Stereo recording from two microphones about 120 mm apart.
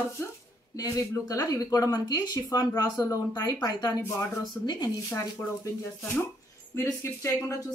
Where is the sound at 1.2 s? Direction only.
30° left (ahead or behind).